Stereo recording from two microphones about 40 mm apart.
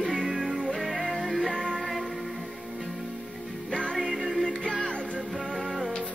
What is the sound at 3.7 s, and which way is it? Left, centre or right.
Music, left.